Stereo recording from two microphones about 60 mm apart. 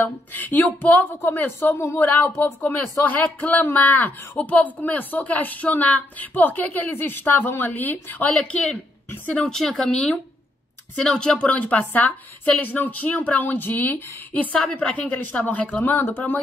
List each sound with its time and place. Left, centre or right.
0.0 s speech: left
9.5 s speech: centre; by 16.3 s left